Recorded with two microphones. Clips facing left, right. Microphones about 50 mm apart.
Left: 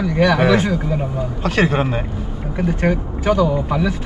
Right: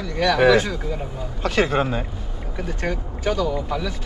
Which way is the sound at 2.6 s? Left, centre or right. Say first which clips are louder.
Left 8 dB; centre.